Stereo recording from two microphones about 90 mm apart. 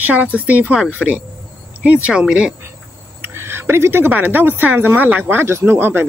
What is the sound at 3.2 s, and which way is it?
A woman's voice, 25° right (ahead or behind).